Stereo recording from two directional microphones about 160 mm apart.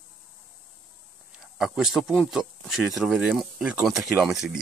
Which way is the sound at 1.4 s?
5° right (ahead or behind).